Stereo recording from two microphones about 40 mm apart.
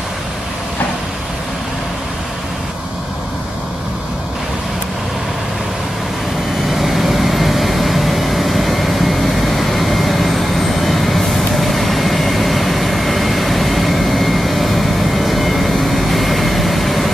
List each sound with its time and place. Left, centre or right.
6.7 s vehicle: centre